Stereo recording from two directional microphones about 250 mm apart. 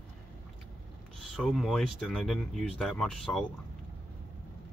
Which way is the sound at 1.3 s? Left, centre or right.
Centre.